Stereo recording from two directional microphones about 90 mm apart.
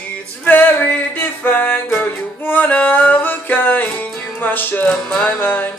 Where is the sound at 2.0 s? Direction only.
20° left (ahead or behind).